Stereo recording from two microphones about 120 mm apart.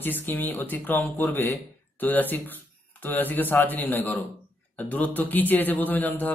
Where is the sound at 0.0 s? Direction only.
15° left (ahead or behind).